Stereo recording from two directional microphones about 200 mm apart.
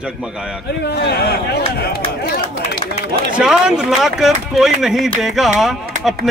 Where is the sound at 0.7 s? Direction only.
55° left (ahead or behind).